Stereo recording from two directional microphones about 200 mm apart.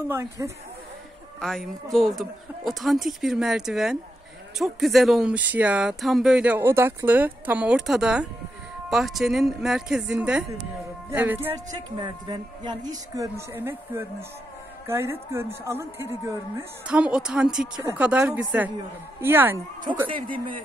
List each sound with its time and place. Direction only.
0.1 s a woman's voice: 15° right (ahead or behind)
1.4 s a woman's voice: centre (ahead or behind)
19.9 s speech: 25° right (ahead or behind)